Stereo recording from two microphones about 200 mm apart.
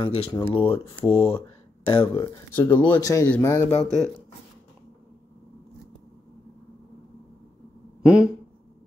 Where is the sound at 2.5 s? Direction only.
10° left (ahead or behind).